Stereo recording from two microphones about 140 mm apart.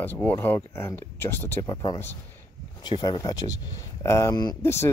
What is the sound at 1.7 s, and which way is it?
Speech, 30° left (ahead or behind).